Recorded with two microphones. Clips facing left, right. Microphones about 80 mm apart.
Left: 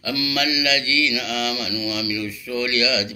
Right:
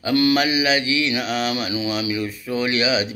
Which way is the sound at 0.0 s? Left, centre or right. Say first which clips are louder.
Right 6 dB; right.